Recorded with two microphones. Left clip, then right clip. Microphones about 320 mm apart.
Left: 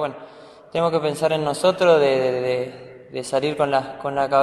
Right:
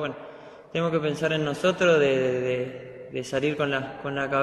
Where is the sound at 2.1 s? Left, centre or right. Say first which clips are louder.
Left 4 dB; left.